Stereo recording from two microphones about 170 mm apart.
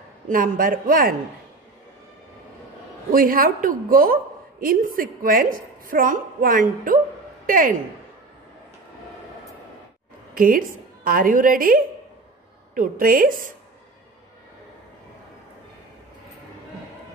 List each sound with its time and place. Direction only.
0.3 s a woman's voice: 55° right (ahead or behind)
3.1 s a woman's voice: 55° right (ahead or behind)
10.3 s a woman's voice: 55° right (ahead or behind)